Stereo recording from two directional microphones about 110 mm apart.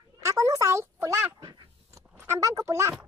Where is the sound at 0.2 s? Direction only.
25° right (ahead or behind).